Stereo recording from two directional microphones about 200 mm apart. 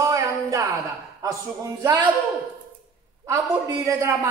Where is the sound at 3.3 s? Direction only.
15° right (ahead or behind).